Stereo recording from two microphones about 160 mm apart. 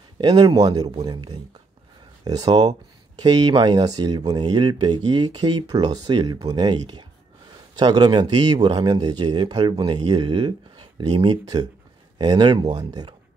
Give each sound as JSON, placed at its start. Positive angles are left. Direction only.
{"t": 0.2, "sound": "speech", "side_deg": -25}